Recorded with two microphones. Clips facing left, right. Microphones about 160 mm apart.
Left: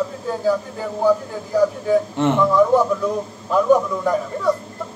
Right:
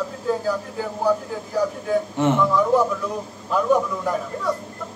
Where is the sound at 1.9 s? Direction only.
Centre (ahead or behind).